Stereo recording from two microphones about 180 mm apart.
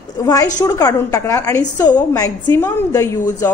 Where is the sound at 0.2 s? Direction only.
20° left (ahead or behind).